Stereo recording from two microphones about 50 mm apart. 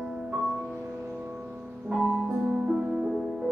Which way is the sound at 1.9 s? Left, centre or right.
Right.